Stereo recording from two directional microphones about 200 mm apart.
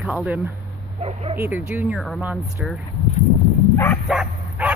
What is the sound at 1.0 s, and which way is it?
Speech, 30° right (ahead or behind).